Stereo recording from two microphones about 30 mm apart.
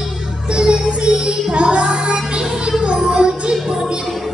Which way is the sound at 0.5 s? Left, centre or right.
Right.